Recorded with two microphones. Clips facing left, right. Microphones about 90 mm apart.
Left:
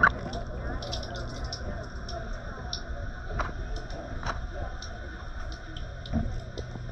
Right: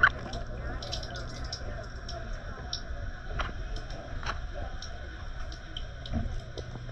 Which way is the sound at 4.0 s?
25° left (ahead or behind).